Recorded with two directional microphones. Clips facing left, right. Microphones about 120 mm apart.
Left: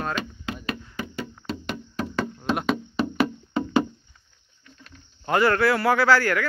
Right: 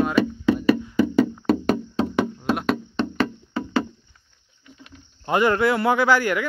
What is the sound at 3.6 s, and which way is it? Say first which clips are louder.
Music: left 2 dB; 20° left (ahead or behind).